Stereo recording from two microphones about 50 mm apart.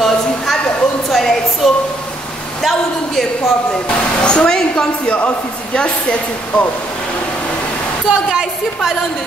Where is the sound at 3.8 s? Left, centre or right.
Centre.